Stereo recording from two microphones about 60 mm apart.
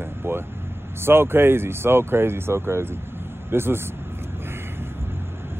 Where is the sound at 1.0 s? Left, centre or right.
Right.